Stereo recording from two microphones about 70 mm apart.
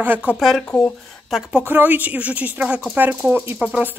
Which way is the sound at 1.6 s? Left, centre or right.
Right.